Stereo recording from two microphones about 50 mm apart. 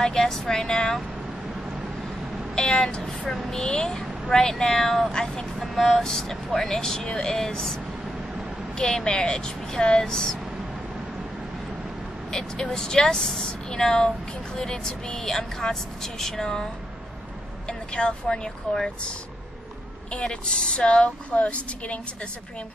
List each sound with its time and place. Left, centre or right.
0.0 s a woman's voice: centre
2.5 s vehicle: centre
3.5 s a woman's voice: centre
5.6 s a woman's voice: centre
12.3 s a woman's voice: centre
17.6 s a woman's voice: centre
20.2 s speech: centre